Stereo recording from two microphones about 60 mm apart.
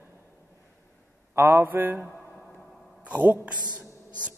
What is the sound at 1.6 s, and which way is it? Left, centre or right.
Mantra, right.